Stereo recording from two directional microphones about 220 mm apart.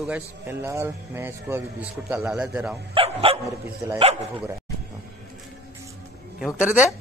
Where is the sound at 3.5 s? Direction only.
15° right (ahead or behind).